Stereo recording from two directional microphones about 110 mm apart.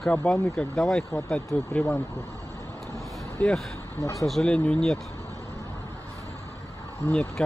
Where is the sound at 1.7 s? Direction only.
15° left (ahead or behind).